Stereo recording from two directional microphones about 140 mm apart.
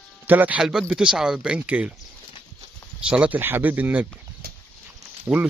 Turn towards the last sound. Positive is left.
turn(degrees=-15)  # may be behind; listen again after turning